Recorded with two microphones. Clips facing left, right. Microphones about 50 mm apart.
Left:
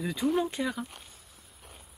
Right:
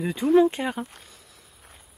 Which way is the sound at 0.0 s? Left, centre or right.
Right.